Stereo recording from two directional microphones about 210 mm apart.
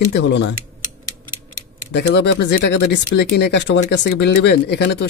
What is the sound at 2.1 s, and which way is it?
Speech, 55° left (ahead or behind).